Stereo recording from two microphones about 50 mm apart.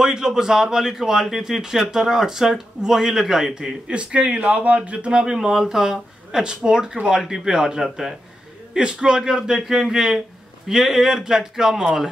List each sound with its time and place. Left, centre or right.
0.0 s speech: centre
3.9 s speech: right; by 8.2 s centre
8.7 s speech: centre